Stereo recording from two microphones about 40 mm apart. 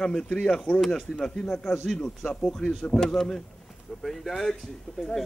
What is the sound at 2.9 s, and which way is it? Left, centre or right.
Speech, centre.